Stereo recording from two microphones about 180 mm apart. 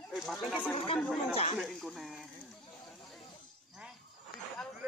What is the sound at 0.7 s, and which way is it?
Speech, 30° left (ahead or behind).